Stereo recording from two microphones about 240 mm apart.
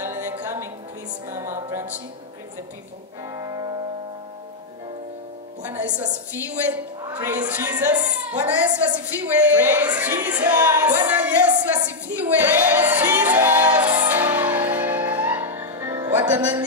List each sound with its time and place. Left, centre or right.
0.0 s music: centre
3.3 s music: centre
5.6 s music: centre
6.5 s a woman's voice: centre
13.9 s music: centre